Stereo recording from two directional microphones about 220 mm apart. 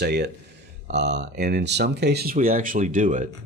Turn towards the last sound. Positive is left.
turn(degrees=-35)  # may be behind; listen again after turning